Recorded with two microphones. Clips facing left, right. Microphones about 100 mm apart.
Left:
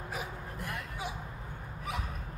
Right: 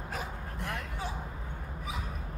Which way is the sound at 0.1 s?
5° left (ahead or behind).